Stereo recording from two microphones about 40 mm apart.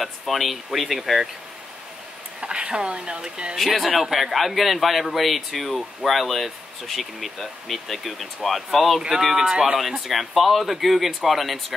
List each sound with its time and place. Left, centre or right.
0.0 s a man's voice: centre
2.4 s speech: right
3.5 s a man's voice: centre
9.5 s speech: centre
10.0 s a man's voice: centre